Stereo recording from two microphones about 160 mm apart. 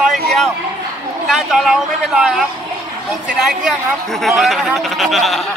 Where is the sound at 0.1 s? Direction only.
Centre (ahead or behind).